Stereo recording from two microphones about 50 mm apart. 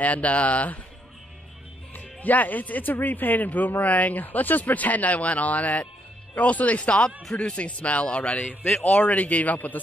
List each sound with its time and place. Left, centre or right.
0.0 s a man's voice: left
2.0 s a man's voice: left
8.5 s a man's voice: left